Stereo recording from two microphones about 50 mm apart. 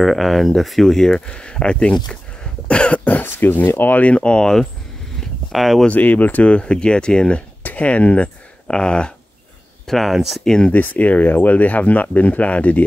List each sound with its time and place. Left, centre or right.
0.0 s speech: centre
2.4 s cough: left
3.3 s speech: left
4.0 s speech: left
5.5 s speech: centre
5.9 s speech: left
8.6 s speech: centre
9.8 s speech: centre
10.4 s speech: centre
10.7 s speech: left